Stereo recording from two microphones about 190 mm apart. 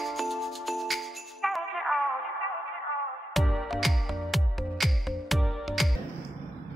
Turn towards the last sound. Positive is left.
turn(degrees=0)  # may be behind; listen again after turning